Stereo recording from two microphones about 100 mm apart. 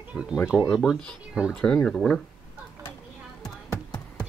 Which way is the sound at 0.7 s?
Centre (ahead or behind).